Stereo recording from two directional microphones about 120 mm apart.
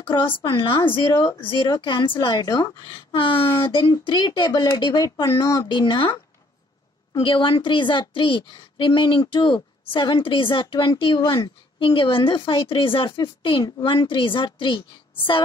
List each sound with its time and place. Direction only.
0.0 s a woman's voice: 45° left (ahead or behind)
3.1 s a woman's voice: 50° left (ahead or behind)
7.2 s a woman's voice: 45° left (ahead or behind)